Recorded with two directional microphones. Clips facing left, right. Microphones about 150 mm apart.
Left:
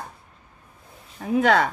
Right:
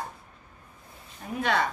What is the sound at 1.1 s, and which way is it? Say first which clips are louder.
Speech: left 8 dB; 90° left.